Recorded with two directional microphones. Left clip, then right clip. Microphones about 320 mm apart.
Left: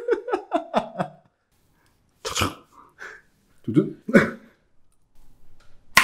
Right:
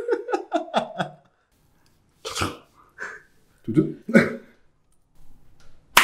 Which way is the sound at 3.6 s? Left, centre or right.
Left.